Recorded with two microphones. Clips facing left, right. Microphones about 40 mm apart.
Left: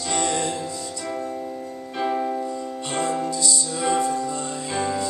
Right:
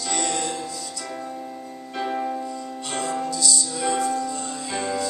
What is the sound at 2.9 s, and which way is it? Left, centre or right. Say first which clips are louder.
Music: left 2 dB; left.